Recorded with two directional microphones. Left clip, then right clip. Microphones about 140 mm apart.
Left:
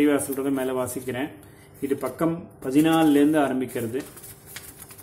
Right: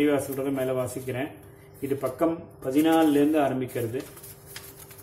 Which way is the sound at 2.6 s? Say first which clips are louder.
Left 2 dB; 35° left (ahead or behind).